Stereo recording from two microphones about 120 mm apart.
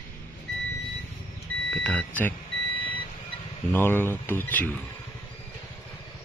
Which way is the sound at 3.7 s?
20° left (ahead or behind).